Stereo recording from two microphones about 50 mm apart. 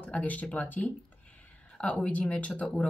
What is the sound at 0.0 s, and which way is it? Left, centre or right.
Speech, left.